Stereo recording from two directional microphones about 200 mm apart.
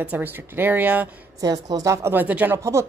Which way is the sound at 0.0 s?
10° right (ahead or behind).